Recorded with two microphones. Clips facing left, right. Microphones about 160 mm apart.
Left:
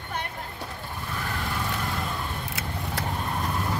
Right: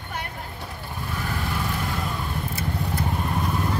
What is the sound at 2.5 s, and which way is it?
Vehicle, 80° left.